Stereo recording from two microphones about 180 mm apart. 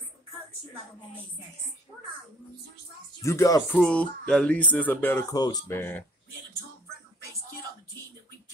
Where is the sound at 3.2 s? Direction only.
20° left (ahead or behind).